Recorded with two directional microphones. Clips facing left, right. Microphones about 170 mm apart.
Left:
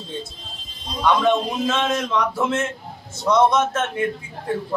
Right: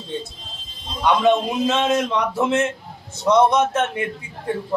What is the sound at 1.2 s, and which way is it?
A man's voice, 20° right (ahead or behind).